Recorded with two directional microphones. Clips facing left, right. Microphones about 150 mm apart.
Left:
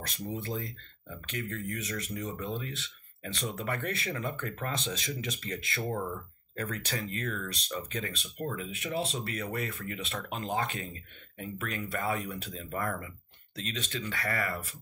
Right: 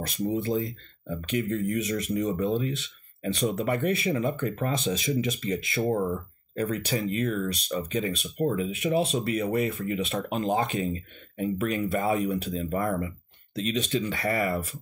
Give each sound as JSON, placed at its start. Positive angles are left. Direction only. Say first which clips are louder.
{"t": 0.0, "sound": "speech", "louder": "right 9 dB", "side_deg": -15}